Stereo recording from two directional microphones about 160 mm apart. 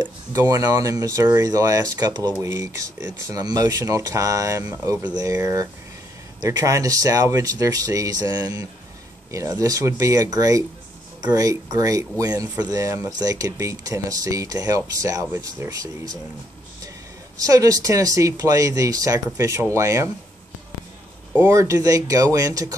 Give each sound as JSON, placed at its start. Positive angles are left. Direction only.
{"t": 0.0, "sound": "speech", "side_deg": -20}
{"t": 17.4, "sound": "speech", "side_deg": -20}
{"t": 21.4, "sound": "speech", "side_deg": -20}